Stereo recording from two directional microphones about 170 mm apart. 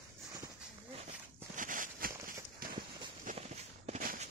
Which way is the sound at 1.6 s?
50° right (ahead or behind).